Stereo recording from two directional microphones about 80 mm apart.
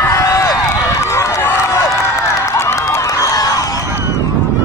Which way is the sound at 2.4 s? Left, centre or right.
Left.